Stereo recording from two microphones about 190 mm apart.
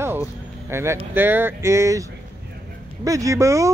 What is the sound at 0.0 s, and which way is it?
A man's voice, 10° right (ahead or behind).